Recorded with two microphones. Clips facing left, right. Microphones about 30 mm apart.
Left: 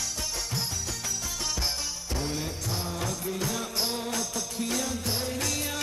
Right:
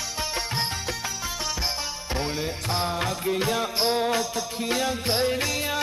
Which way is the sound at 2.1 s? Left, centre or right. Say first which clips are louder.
Right 4 dB; right.